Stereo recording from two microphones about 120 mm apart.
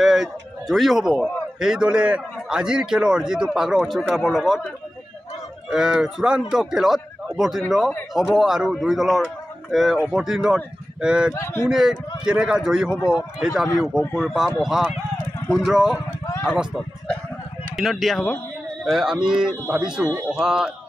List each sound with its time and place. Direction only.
0.0 s a man's voice: 5° right (ahead or behind)
11.3 s speech: 25° left (ahead or behind)
11.7 s a man's voice: 5° right (ahead or behind)
17.7 s a man's voice: centre (ahead or behind)